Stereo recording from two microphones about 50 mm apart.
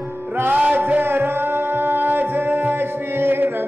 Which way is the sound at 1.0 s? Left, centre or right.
Right.